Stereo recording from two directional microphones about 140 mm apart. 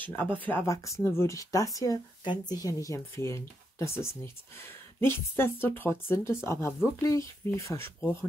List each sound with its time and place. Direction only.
0.0 s speech: 15° left (ahead or behind)